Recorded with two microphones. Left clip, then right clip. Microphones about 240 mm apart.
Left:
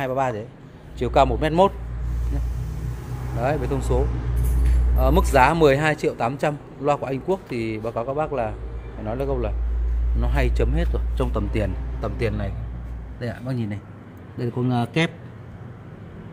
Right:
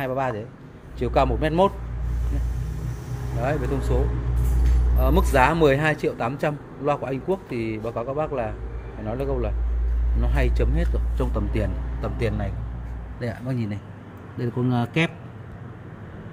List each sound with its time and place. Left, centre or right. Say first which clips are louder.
0.0 s a man's voice: left 2 dB; centre
3.3 s a man's voice: left 2 dB; centre
12.0 s speech: left 1 dB; centre